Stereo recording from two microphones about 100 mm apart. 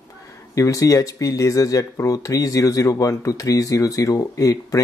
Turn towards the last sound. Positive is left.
turn(degrees=35)  # may be behind; listen again after turning